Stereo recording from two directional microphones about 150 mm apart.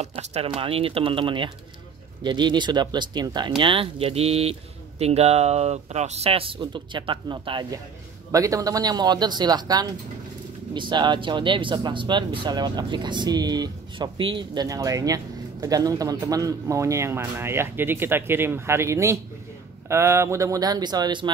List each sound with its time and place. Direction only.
0.0 s speech: 45° right (ahead or behind); by 21.3 s 30° right (ahead or behind)